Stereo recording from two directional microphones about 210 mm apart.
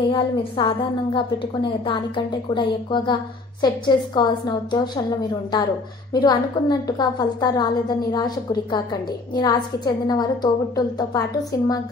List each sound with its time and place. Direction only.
0.1 s a woman's voice: 25° left (ahead or behind)
6.1 s a woman's voice: 20° left (ahead or behind)